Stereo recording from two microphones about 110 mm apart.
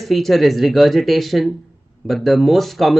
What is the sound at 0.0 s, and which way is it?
Speech, centre (ahead or behind).